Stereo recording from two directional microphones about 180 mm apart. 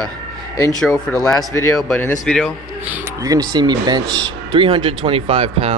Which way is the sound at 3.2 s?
20° right (ahead or behind).